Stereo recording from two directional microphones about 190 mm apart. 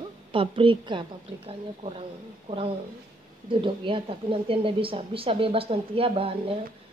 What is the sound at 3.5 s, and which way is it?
A woman's voice, 25° right (ahead or behind).